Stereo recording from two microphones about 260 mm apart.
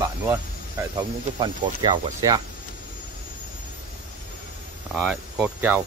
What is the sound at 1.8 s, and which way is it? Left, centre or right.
Speech, centre.